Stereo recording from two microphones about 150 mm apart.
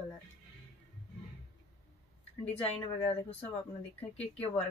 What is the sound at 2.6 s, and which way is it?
Speech, 45° left (ahead or behind).